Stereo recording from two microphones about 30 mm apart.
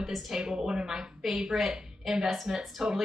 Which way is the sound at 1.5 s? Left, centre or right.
Centre.